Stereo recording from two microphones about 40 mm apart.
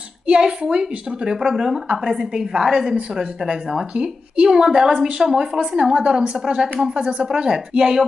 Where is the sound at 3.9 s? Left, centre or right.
Right.